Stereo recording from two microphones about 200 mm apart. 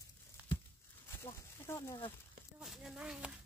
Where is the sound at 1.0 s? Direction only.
10° left (ahead or behind).